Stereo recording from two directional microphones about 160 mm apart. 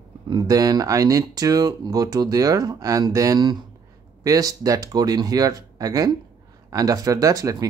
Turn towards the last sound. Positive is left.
turn(degrees=-20)  # may be behind; listen again after turning